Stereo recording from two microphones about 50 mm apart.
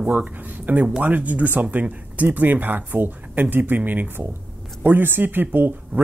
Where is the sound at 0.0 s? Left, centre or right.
Right.